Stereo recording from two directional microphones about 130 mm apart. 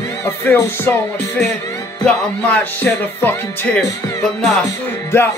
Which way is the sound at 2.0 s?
15° left (ahead or behind).